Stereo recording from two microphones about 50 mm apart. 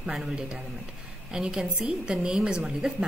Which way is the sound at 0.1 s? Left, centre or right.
Centre.